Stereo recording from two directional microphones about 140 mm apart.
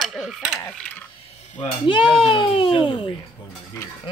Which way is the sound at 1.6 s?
35° left (ahead or behind).